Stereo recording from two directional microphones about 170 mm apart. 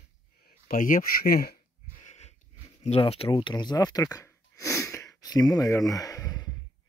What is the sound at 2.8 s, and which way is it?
Speech, 35° left (ahead or behind).